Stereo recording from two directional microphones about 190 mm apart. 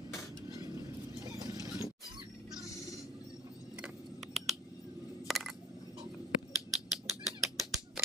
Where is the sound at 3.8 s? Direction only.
Centre (ahead or behind).